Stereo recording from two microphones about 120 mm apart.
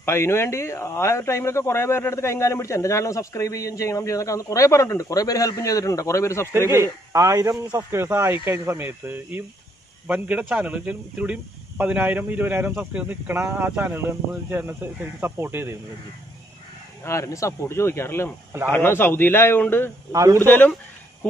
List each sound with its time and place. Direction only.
0.0 s speech: 20° left (ahead or behind)
6.7 s speech: 25° right (ahead or behind)
17.0 s a man's voice: 25° left (ahead or behind)
20.1 s speech: 30° right (ahead or behind)
20.3 s a man's voice: 15° left (ahead or behind)